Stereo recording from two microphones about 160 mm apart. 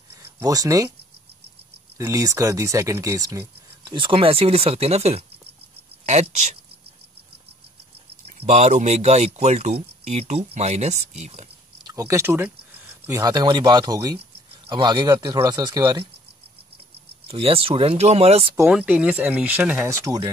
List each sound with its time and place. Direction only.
0.2 s speech: 20° right (ahead or behind)
2.0 s speech: 20° right (ahead or behind)
3.9 s speech: 30° right (ahead or behind)
8.3 s speech: 45° right (ahead or behind)
11.8 s speech: 20° right (ahead or behind)
17.3 s speech: 35° right (ahead or behind)
18.7 s speech: 5° right (ahead or behind); by 20.2 s 20° right (ahead or behind)